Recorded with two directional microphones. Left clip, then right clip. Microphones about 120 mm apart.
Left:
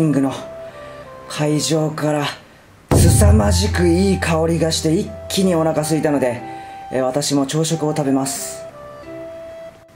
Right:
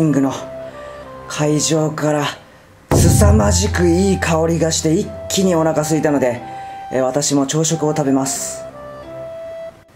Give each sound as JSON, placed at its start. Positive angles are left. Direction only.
{"t": 0.0, "sound": "speech", "side_deg": 0}